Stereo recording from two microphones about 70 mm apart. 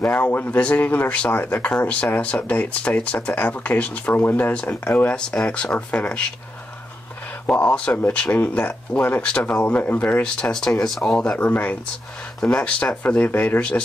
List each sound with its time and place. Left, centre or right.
0.0 s speech: left
7.4 s speech: centre
10.2 s speech: centre
12.4 s speech: centre
13.6 s speech: centre